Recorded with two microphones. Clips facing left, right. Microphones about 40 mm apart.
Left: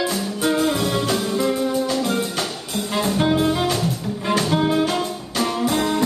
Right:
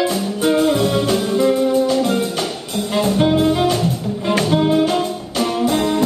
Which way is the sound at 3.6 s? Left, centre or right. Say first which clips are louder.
Right 4 dB; right.